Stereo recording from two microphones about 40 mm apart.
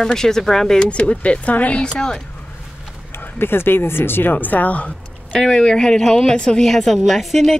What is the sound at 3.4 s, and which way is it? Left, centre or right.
Speech, left.